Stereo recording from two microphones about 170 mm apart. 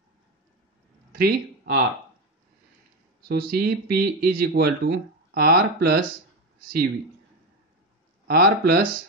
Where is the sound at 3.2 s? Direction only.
60° right (ahead or behind).